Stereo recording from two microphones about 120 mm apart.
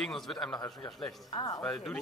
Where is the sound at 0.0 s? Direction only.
5° left (ahead or behind).